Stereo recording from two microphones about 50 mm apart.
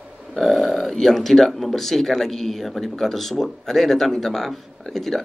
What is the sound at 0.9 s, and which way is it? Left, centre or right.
A man's voice, centre.